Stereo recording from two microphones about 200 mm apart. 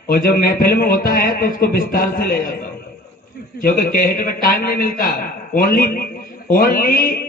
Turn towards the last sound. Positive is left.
turn(degrees=45)  # may be behind; listen again after turning